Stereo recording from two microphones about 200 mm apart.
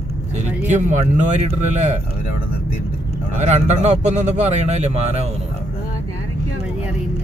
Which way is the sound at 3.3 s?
35° right (ahead or behind).